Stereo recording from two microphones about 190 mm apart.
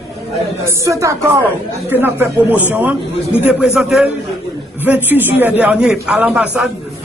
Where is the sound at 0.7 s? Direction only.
15° right (ahead or behind).